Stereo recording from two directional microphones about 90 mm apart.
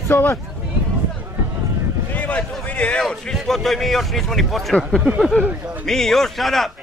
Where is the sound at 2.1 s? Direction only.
15° left (ahead or behind).